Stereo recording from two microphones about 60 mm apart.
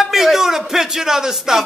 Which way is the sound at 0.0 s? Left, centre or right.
Centre.